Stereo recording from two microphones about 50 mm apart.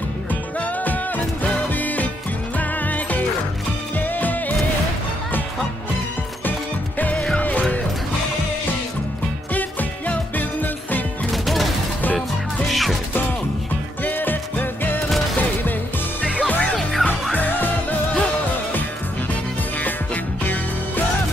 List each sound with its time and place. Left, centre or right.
0.3 s music: left
7.0 s music: left
9.5 s music: left
11.4 s music: centre
12.0 s music: left
12.6 s music: centre
14.0 s music: left
16.3 s music: left